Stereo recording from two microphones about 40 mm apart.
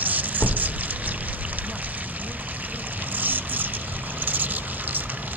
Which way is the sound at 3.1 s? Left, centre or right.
Right.